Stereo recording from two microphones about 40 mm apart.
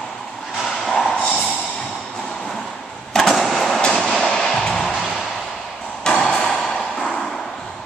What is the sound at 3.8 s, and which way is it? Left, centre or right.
Vehicle, centre.